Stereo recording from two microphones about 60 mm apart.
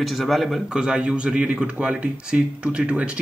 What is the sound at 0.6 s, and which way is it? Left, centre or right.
Speech, centre.